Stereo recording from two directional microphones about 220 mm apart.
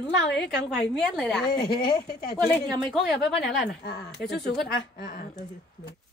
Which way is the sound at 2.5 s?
Centre (ahead or behind).